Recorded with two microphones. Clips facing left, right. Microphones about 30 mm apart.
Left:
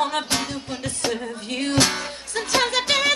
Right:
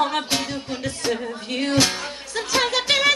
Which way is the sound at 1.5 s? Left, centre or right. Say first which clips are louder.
Right 1 dB; centre.